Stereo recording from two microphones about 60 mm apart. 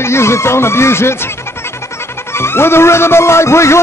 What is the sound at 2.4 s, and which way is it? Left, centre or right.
Speech, left.